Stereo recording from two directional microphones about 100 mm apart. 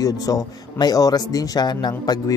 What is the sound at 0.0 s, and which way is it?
A man's voice, 35° left (ahead or behind).